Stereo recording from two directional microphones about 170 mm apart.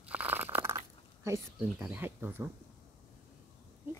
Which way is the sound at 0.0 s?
10° right (ahead or behind).